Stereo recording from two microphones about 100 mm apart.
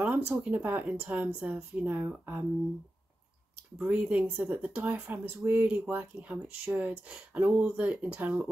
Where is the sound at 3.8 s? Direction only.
10° right (ahead or behind).